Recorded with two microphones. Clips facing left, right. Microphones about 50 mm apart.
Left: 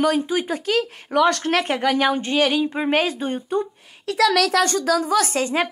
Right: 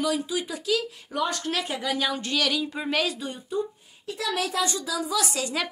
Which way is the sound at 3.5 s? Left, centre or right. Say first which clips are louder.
Left 5 dB; left.